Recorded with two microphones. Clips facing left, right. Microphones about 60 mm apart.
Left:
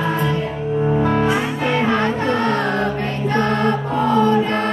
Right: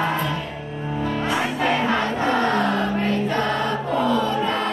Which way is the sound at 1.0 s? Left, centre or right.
Left.